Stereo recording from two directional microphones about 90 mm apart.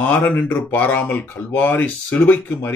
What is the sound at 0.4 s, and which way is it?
A man's voice, 20° left (ahead or behind).